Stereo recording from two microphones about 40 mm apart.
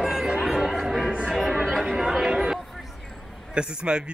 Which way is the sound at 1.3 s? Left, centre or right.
Centre.